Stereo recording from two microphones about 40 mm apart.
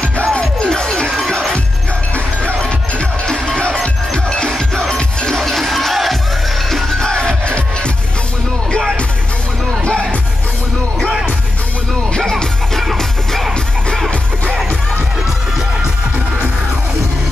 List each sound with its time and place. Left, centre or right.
0.3 s music: left
2.6 s music: left
5.4 s music: centre
7.0 s music: centre
12.3 s music: centre